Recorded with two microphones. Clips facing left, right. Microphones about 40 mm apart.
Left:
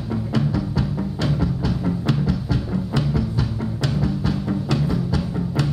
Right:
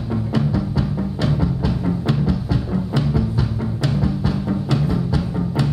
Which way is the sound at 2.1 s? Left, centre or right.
Centre.